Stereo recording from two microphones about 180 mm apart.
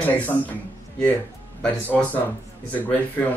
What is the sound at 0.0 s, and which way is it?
Speech, 10° left (ahead or behind).